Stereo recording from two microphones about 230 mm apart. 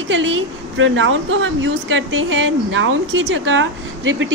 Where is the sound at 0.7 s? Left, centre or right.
Right.